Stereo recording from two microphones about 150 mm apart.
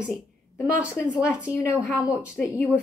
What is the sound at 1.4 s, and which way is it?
Speech, 20° left (ahead or behind).